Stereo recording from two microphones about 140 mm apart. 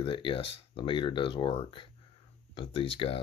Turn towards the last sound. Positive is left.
turn(degrees=40)  # may be behind; listen again after turning